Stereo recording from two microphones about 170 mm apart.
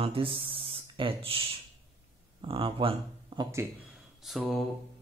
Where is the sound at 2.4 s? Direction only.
30° right (ahead or behind).